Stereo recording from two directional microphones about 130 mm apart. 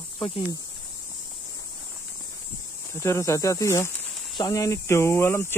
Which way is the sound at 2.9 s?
20° left (ahead or behind).